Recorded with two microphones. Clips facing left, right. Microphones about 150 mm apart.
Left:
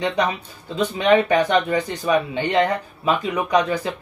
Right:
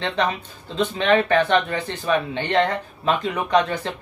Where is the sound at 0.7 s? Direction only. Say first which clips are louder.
Left 2 dB; 10° left (ahead or behind).